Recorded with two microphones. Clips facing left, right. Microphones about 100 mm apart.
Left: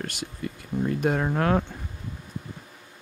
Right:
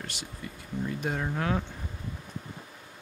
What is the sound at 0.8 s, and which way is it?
Speech, 60° left (ahead or behind).